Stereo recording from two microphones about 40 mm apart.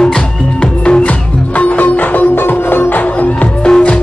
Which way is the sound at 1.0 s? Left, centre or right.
Left.